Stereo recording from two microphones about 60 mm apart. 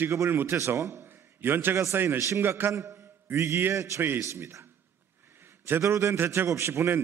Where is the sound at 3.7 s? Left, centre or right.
Right.